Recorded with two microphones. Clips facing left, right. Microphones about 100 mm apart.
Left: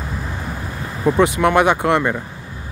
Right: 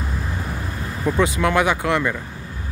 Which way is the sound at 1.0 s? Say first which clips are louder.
Left 5 dB; 20° left (ahead or behind).